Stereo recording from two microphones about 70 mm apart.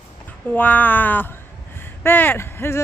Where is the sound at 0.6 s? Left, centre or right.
Left.